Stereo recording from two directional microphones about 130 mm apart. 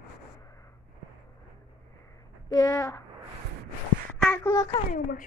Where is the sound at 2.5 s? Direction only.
25° left (ahead or behind).